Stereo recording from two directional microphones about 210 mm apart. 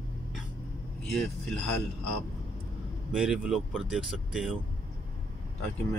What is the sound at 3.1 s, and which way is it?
Speech, 5° right (ahead or behind).